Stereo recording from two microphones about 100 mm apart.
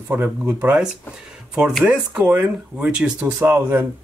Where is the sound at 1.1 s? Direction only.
5° right (ahead or behind).